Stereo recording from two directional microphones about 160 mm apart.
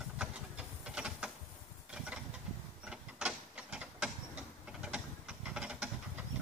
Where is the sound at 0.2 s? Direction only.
5° right (ahead or behind).